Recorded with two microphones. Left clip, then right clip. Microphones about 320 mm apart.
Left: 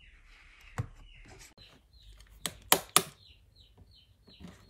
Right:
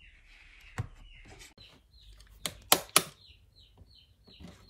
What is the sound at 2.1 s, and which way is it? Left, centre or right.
Typing, centre.